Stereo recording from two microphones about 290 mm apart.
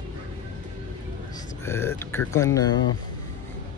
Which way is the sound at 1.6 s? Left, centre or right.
Centre.